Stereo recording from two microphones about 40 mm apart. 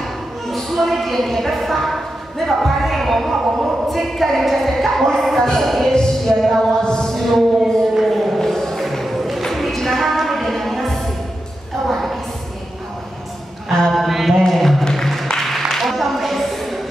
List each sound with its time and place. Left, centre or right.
0.5 s speech: centre
5.7 s music: centre
6.8 s chant: centre
7.1 s chant: centre
7.6 s a sound: centre
8.4 s music: centre
11.9 s a sound: centre
13.9 s mantra: centre
14.5 s a sound: centre